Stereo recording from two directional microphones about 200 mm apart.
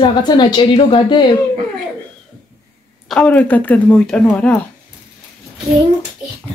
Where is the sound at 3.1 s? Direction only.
5° left (ahead or behind).